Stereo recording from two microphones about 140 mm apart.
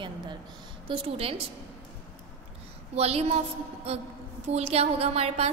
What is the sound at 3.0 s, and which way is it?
A woman's voice, 45° right (ahead or behind).